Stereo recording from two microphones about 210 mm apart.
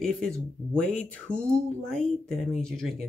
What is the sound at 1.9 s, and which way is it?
Speech, 5° left (ahead or behind).